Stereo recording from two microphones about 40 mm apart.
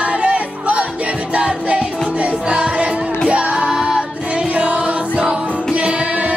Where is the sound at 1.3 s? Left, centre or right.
Right.